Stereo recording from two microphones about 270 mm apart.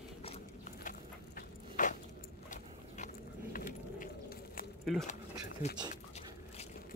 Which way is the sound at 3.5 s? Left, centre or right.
Left.